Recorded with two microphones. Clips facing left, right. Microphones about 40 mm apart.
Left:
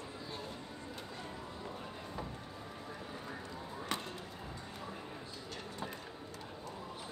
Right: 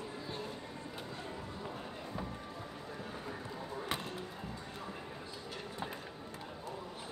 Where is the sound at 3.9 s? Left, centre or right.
Centre.